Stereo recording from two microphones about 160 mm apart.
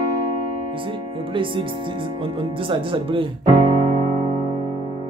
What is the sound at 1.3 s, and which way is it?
Speech, 30° right (ahead or behind).